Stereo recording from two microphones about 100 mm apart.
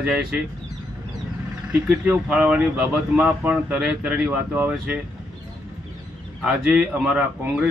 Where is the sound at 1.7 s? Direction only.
15° right (ahead or behind).